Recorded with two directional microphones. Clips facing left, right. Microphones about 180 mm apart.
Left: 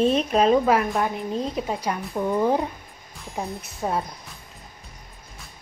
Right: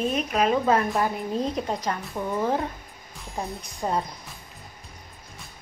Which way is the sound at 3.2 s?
Centre (ahead or behind).